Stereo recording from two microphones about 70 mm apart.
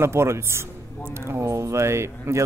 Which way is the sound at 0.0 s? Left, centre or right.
Right.